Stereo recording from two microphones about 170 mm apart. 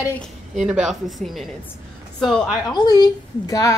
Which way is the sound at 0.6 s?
5° right (ahead or behind).